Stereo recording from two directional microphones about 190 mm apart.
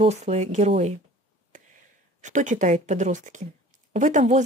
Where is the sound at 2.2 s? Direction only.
40° right (ahead or behind).